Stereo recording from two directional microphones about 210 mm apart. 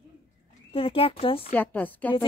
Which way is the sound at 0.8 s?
25° left (ahead or behind).